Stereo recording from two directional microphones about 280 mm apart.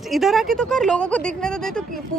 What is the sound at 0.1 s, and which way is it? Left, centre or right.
Speech, centre.